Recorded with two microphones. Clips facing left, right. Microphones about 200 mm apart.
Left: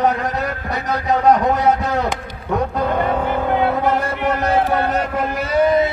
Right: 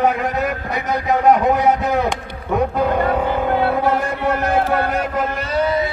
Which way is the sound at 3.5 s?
20° left (ahead or behind).